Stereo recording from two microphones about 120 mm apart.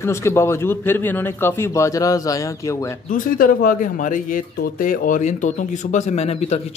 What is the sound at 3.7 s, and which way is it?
A man's voice, 90° left.